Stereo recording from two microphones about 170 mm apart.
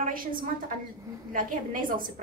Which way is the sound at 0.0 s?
55° right (ahead or behind).